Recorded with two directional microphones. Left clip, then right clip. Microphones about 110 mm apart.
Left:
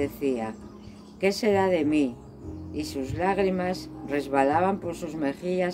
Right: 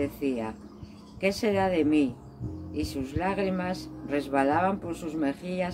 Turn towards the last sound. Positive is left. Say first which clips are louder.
# left 3 dB
turn(degrees=35)  # may be behind; listen again after turning